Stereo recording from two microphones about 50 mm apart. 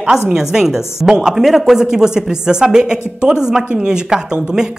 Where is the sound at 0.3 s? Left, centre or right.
Centre.